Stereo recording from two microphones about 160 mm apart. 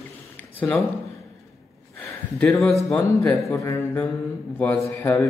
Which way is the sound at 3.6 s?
20° left (ahead or behind).